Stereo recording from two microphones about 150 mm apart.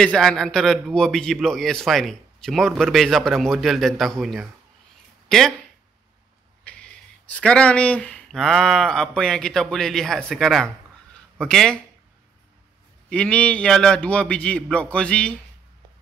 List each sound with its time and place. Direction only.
0.0 s a man's voice: 5° left (ahead or behind)
6.7 s a man's voice: 10° left (ahead or behind)
13.1 s a man's voice: 10° left (ahead or behind)